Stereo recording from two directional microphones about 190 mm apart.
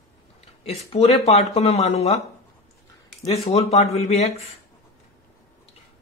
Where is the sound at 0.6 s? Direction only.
35° left (ahead or behind).